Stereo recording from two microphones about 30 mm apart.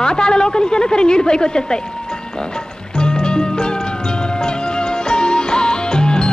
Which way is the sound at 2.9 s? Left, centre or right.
Left.